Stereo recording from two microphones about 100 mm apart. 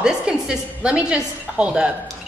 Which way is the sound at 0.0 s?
10° right (ahead or behind).